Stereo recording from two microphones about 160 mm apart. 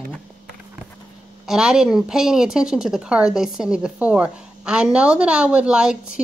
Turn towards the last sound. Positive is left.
turn(degrees=-5)  # may be behind; listen again after turning